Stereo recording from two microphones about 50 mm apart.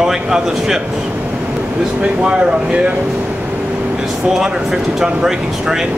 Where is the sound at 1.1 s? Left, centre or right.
Right.